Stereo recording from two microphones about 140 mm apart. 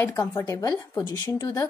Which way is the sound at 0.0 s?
20° left (ahead or behind).